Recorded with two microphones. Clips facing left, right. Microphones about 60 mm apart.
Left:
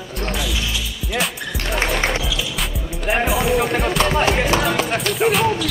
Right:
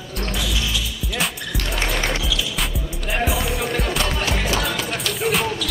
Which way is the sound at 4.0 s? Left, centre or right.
Left.